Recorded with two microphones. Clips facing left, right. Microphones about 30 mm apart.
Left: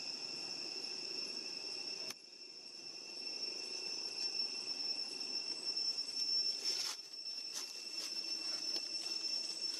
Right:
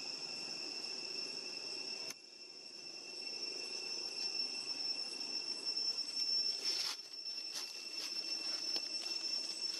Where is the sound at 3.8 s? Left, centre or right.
Centre.